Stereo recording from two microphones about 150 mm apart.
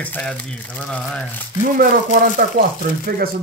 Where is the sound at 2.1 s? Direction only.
75° right (ahead or behind).